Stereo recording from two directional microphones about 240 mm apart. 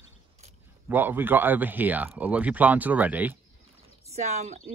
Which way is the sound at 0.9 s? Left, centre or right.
Centre.